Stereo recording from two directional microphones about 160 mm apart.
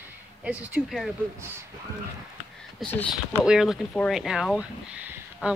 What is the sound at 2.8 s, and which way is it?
Speech, 10° left (ahead or behind).